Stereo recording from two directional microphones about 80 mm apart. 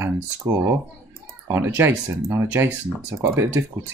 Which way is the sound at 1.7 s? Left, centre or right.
Right.